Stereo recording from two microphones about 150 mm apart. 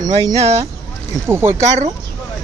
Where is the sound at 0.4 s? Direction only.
45° right (ahead or behind).